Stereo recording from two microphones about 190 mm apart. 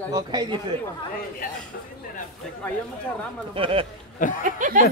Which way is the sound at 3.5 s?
30° right (ahead or behind).